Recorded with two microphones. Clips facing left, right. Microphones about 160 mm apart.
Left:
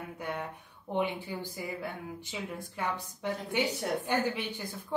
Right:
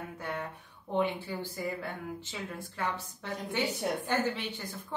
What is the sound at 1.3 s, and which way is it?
Speech, 15° left (ahead or behind).